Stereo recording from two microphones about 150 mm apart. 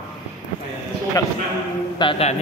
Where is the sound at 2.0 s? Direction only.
30° left (ahead or behind).